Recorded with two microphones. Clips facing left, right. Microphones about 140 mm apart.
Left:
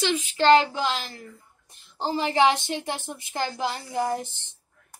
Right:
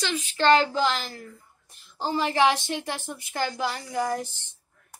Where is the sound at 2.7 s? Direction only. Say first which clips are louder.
Left 1 dB; 25° left (ahead or behind).